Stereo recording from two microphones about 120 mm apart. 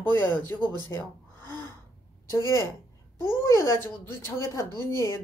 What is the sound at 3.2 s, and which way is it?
A woman's voice, 20° left (ahead or behind).